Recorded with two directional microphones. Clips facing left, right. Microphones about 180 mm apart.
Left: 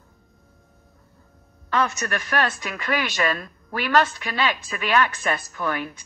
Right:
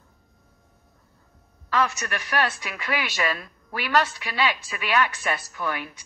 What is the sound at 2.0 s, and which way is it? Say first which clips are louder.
A woman's voice: left 2 dB; 50° left (ahead or behind).